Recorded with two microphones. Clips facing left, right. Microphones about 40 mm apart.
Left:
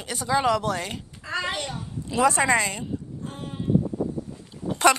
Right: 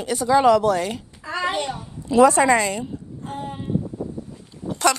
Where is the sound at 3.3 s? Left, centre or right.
Centre.